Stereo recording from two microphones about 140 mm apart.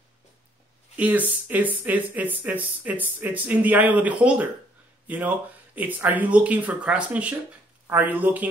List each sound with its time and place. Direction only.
0.9 s speech: 10° right (ahead or behind)